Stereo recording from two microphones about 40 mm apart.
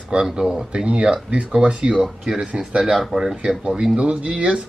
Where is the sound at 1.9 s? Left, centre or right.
Centre.